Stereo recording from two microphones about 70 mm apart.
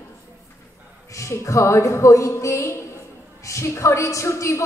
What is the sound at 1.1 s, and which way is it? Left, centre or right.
A woman's voice, left.